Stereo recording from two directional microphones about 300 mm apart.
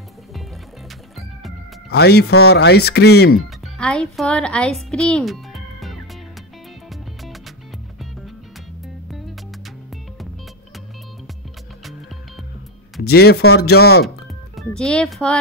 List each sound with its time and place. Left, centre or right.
1.9 s speech: left
3.3 s a child's voice: centre
13.0 s speech: left
14.6 s speech: centre